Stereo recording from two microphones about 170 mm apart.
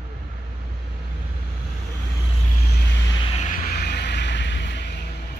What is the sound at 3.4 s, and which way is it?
Vehicle, 60° left (ahead or behind).